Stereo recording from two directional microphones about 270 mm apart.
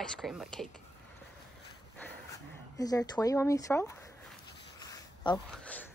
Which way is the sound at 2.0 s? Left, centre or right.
Centre.